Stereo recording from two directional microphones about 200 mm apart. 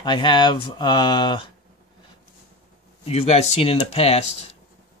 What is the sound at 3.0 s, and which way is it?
Speech, 30° left (ahead or behind).